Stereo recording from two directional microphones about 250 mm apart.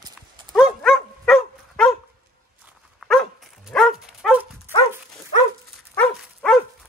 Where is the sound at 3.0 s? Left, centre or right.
Centre.